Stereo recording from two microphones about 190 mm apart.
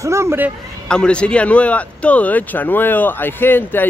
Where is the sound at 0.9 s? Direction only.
5° left (ahead or behind).